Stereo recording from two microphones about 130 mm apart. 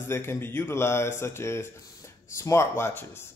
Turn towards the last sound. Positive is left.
turn(degrees=20)  # may be behind; listen again after turning